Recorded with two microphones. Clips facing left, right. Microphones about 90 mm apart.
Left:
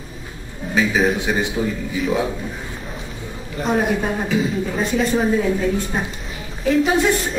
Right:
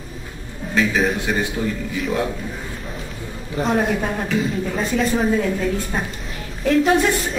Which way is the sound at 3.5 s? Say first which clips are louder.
Even; centre (ahead or behind).